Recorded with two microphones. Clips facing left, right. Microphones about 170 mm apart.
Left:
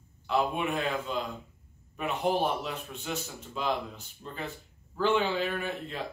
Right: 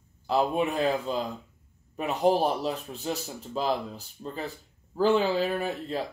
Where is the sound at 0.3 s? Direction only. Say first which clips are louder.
Right 3 dB; 35° right (ahead or behind).